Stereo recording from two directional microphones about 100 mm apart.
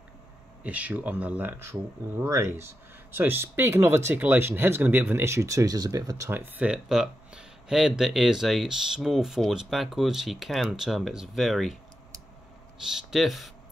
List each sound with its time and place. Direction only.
0.7 s speech: 15° right (ahead or behind)
1.6 s speech: 25° right (ahead or behind)
6.4 s speech: 15° right (ahead or behind)
12.8 s speech: 5° right (ahead or behind)